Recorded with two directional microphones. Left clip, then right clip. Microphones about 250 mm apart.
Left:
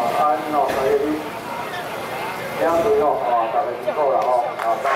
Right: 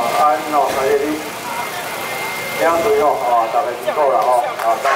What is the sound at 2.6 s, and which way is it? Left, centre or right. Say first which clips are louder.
Speech: right 3 dB; centre.